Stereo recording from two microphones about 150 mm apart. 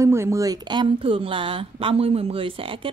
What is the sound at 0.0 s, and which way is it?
A woman's voice, 20° right (ahead or behind).